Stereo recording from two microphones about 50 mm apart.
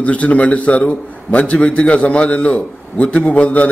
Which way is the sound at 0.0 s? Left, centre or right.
Left.